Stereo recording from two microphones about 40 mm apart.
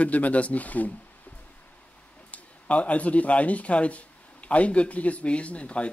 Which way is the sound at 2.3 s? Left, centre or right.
Left.